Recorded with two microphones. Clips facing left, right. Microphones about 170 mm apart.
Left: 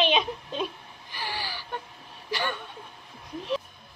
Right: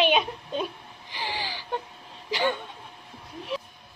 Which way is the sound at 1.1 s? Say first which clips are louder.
Right 2 dB; 15° right (ahead or behind).